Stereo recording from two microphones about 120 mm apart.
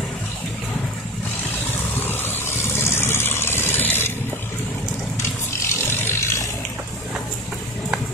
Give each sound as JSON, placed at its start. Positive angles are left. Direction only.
{"t": 2.0, "sound": "vehicle", "side_deg": 20}
{"t": 5.9, "sound": "vehicle", "side_deg": 20}